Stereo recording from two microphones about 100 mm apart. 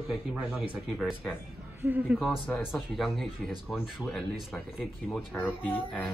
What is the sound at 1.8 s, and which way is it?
Speech, 20° right (ahead or behind).